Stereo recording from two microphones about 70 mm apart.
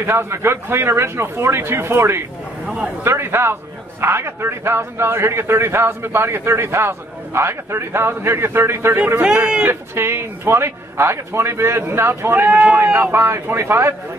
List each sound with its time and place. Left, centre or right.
0.0 s a man's voice: right